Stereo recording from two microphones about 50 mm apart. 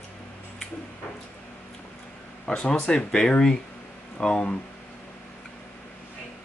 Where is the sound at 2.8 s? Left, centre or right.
Centre.